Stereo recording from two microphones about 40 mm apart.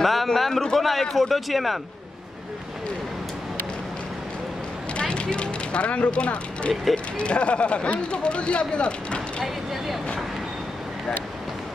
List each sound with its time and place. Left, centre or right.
0.0 s a man's voice: centre
5.0 s speech: left
6.7 s speech: centre
7.2 s speech: left